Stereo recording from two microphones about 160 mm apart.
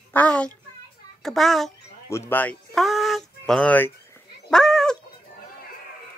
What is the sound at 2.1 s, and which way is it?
Speech, 15° left (ahead or behind).